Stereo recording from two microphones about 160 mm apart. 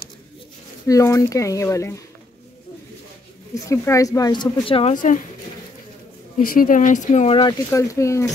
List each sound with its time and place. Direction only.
0.8 s speech: 20° left (ahead or behind)
3.6 s speech: 20° left (ahead or behind); by 4.9 s 35° left (ahead or behind)
4.9 s speech: 55° left (ahead or behind)
6.3 s speech: 65° left (ahead or behind); by 7.5 s 35° left (ahead or behind)
7.7 s speech: 20° left (ahead or behind)